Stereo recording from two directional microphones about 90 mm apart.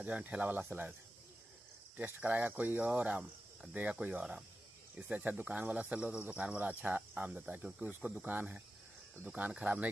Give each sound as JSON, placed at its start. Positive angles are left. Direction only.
{"t": 0.0, "sound": "speech", "side_deg": -15}
{"t": 2.0, "sound": "speech", "side_deg": -20}